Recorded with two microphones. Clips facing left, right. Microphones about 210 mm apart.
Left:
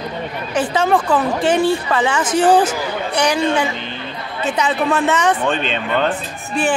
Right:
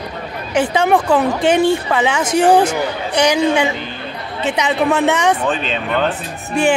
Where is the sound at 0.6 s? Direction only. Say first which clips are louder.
Right 2 dB; 15° right (ahead or behind).